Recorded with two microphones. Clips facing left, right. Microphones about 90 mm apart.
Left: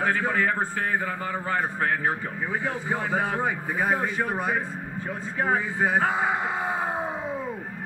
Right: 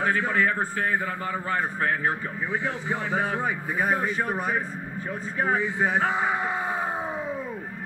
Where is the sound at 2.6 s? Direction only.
40° left (ahead or behind).